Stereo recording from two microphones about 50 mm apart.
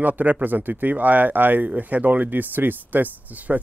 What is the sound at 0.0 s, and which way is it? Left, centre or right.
Speech, right.